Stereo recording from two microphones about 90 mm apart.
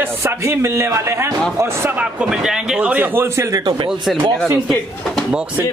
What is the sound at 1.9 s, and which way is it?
A man's voice, 10° right (ahead or behind).